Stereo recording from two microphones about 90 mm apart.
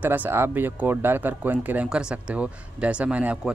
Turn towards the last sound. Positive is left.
turn(degrees=-15)  # may be behind; listen again after turning